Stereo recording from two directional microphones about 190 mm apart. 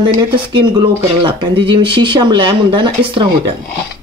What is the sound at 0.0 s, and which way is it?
Speech, 25° right (ahead or behind).